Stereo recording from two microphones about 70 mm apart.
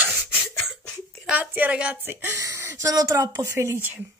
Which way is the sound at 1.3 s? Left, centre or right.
Right.